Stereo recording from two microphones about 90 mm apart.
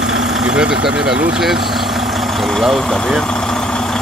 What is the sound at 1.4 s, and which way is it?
Vehicle, centre (ahead or behind).